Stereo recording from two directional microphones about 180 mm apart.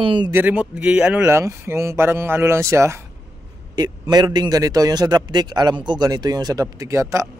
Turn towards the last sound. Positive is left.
turn(degrees=-15)  # may be behind; listen again after turning